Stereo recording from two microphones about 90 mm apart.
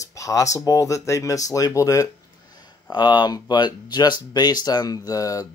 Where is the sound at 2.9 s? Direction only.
55° left (ahead or behind).